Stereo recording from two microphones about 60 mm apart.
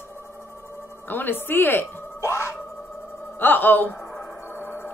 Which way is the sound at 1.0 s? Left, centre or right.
Left.